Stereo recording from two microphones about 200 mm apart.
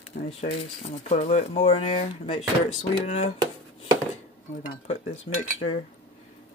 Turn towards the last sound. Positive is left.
turn(degrees=30)  # may be behind; listen again after turning